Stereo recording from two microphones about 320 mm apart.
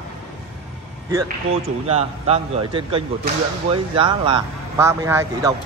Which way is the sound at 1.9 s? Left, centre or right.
Centre.